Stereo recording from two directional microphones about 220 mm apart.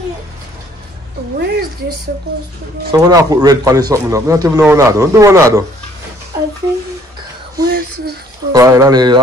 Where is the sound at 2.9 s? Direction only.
15° right (ahead or behind).